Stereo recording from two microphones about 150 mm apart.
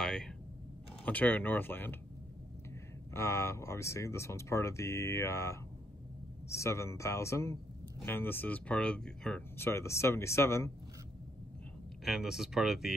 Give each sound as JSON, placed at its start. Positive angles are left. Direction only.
{"t": 0.0, "sound": "a sound", "side_deg": 5}
{"t": 1.0, "sound": "speech", "side_deg": 10}
{"t": 3.1, "sound": "speech", "side_deg": 20}
{"t": 9.6, "sound": "speech", "side_deg": 20}
{"t": 12.0, "sound": "speech", "side_deg": 0}